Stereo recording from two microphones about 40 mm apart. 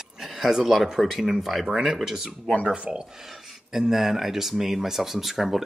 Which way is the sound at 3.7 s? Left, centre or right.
Centre.